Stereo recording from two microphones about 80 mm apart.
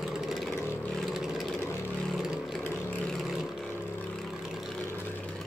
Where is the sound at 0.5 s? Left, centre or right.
Left.